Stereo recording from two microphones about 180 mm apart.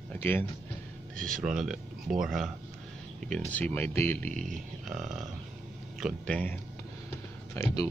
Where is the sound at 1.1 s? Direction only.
Centre (ahead or behind).